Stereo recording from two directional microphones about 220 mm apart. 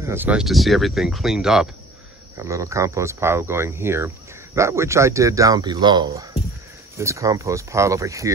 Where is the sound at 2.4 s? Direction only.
15° right (ahead or behind).